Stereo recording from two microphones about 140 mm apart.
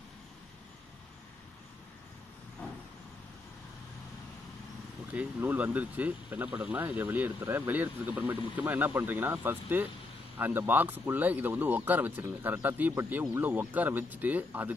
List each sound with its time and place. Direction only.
5.1 s speech: 10° right (ahead or behind)